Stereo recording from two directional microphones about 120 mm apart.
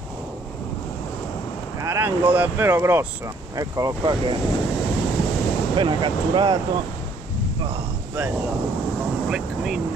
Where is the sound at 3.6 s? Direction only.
30° right (ahead or behind).